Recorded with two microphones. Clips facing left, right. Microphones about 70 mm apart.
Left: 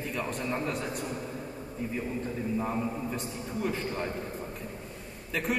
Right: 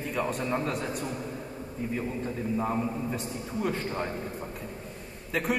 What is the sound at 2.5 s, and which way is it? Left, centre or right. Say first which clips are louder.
Speech: right 3 dB; centre.